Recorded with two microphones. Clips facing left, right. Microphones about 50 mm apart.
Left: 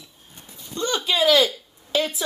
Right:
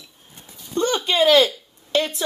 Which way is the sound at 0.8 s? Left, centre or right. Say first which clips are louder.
Right 6 dB; right.